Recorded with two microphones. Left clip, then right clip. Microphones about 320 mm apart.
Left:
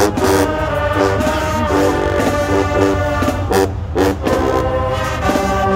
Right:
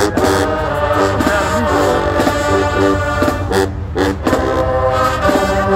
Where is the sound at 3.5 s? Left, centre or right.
Centre.